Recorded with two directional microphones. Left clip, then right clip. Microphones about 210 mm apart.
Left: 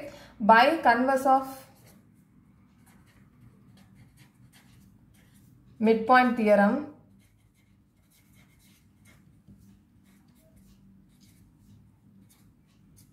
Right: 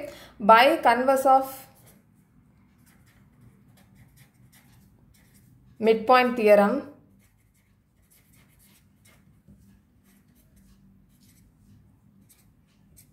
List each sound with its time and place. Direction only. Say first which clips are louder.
0.1 s a woman's voice: right 3 dB; 50° right (ahead or behind)
5.8 s a woman's voice: right 2 dB; 45° right (ahead or behind)